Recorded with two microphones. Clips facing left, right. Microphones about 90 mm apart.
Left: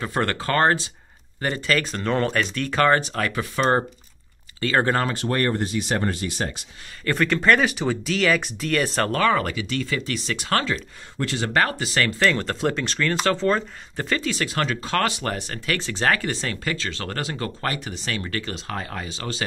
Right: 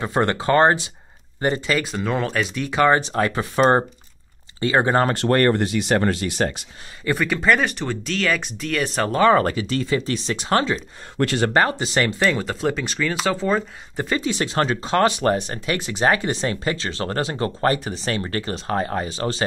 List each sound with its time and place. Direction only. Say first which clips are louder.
0.0 s speech: right 4 dB; 20° right (ahead or behind)
1.8 s speech: even; 5° right (ahead or behind)
3.1 s speech: right 4 dB; 25° right (ahead or behind)
5.1 s speech: right 6 dB; 65° right (ahead or behind)
7.1 s speech: even; 5° right (ahead or behind)
9.3 s speech: right 5 dB; 35° right (ahead or behind)
11.1 s speech: right 6 dB; 55° right (ahead or behind)
11.5 s speech: right 3 dB; 25° right (ahead or behind)